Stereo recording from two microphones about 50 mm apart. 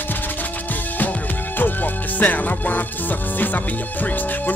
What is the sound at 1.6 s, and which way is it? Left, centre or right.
Music, left.